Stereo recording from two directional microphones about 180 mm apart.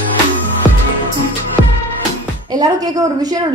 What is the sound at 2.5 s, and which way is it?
Speech, 20° right (ahead or behind).